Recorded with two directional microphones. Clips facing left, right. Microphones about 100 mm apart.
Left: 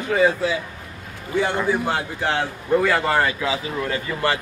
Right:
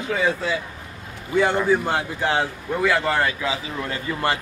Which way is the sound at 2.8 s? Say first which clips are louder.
Right 3 dB; centre (ahead or behind).